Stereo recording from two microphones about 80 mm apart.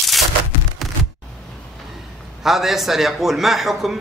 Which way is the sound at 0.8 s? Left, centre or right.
Centre.